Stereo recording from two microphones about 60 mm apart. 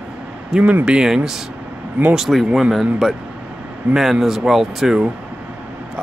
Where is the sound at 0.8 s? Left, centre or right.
Centre.